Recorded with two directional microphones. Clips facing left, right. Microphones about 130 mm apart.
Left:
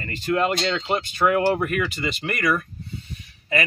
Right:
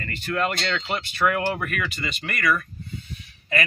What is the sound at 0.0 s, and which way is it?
Speech, 20° left (ahead or behind).